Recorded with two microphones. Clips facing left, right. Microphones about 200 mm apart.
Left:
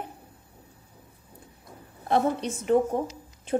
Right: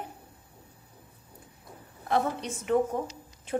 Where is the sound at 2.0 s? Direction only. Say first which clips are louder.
Left 4 dB; 30° left (ahead or behind).